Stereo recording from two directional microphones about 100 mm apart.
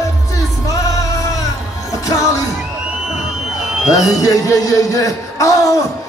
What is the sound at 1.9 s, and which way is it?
Music, 35° left (ahead or behind).